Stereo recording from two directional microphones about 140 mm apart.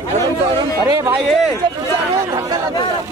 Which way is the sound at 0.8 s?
25° right (ahead or behind).